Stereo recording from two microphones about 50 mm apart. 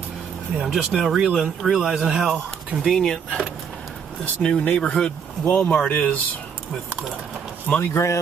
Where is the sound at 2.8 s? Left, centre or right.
Centre.